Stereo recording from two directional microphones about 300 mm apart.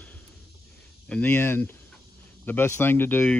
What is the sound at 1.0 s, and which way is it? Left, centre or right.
Speech, centre.